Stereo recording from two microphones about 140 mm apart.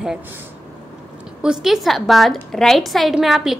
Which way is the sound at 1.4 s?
Centre (ahead or behind).